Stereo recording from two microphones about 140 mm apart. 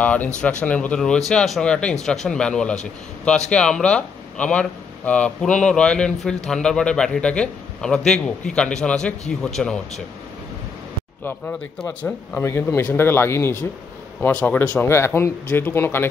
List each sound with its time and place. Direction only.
0.0 s a man's voice: 10° left (ahead or behind)
11.8 s a man's voice: 10° left (ahead or behind)